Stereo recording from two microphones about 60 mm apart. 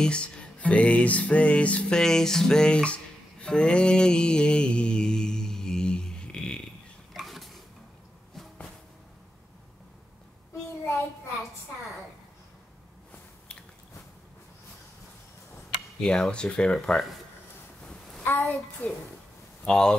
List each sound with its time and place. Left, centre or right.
0.0 s music: centre
7.2 s dishes: centre
16.0 s speech: centre
18.2 s a child's voice: left
19.6 s speech: centre